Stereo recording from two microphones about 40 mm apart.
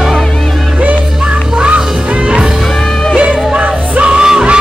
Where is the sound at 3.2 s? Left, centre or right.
Right.